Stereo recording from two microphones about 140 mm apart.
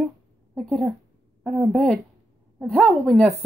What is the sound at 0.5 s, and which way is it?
Speech, 5° right (ahead or behind).